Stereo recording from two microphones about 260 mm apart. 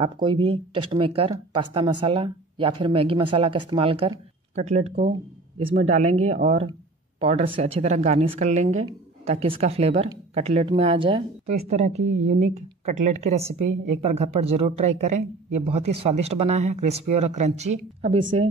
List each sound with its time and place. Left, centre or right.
0.0 s a woman's voice: centre